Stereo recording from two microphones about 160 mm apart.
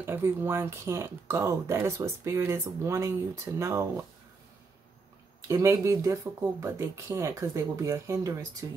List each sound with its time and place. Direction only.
0.0 s speech: 15° right (ahead or behind)
5.5 s speech: 20° right (ahead or behind)